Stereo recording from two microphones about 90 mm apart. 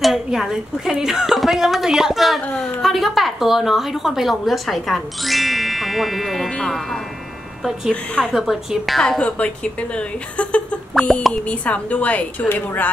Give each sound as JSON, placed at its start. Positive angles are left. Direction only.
{"t": 0.0, "sound": "a woman's voice", "side_deg": -5}
{"t": 8.3, "sound": "a woman's voice", "side_deg": -5}
{"t": 9.2, "sound": "a woman's voice", "side_deg": 15}
{"t": 11.1, "sound": "a woman's voice", "side_deg": 0}
{"t": 11.4, "sound": "a woman's voice", "side_deg": 15}